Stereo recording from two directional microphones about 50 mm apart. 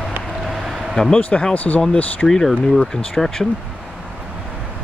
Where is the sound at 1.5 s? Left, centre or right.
Left.